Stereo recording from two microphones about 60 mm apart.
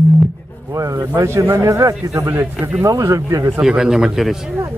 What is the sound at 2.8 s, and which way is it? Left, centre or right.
Speech, right.